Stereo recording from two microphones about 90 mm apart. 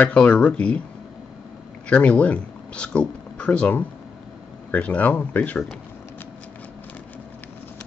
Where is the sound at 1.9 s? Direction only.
15° left (ahead or behind).